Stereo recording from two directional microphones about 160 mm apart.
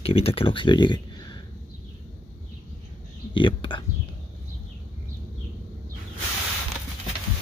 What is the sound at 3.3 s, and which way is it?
Speech, 30° left (ahead or behind).